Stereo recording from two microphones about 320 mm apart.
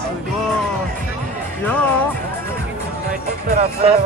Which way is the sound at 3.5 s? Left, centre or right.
Centre.